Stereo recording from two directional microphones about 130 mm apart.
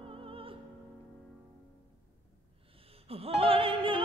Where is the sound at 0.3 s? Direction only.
45° right (ahead or behind).